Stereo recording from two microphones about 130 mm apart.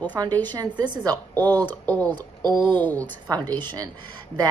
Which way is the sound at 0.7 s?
35° right (ahead or behind).